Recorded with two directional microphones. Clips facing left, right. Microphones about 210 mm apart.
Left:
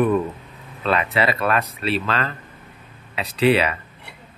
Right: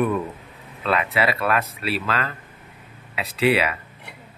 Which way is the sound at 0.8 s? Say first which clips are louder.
Left 1 dB; 5° right (ahead or behind).